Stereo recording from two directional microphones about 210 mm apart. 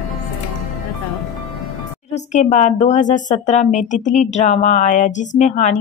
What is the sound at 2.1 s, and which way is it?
Speech, 35° left (ahead or behind).